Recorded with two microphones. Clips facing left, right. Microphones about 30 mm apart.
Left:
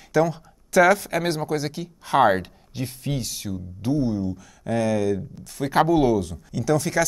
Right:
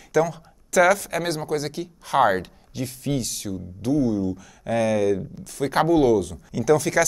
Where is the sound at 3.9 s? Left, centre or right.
Left.